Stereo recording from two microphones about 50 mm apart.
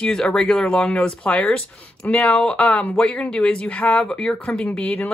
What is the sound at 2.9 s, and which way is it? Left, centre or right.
Speech, centre.